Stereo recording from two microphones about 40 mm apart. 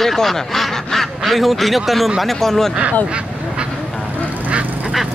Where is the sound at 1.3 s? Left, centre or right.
Centre.